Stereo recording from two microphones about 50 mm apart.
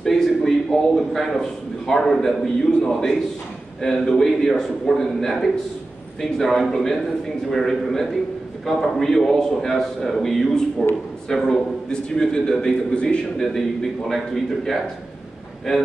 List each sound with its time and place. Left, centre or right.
0.0 s a man's voice: centre